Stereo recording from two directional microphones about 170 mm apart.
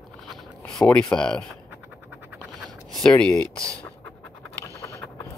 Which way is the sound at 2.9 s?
5° left (ahead or behind).